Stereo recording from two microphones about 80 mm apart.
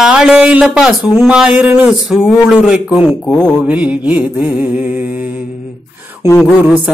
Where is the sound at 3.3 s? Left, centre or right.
Centre.